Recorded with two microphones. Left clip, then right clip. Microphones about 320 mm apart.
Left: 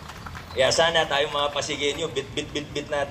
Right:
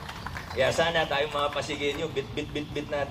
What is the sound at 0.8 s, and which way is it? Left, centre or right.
Speech, centre.